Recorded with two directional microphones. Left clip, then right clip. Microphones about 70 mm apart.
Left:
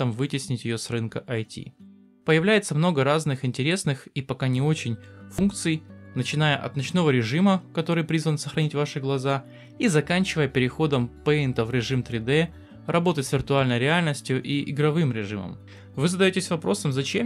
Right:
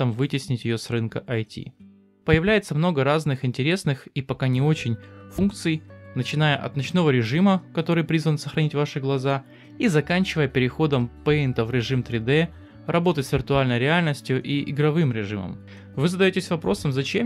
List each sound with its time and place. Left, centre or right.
0.0 s speech: right